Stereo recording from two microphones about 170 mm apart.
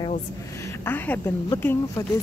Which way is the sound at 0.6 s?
10° left (ahead or behind).